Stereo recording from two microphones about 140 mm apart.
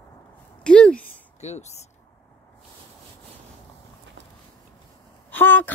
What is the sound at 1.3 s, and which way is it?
Speech, 55° left (ahead or behind).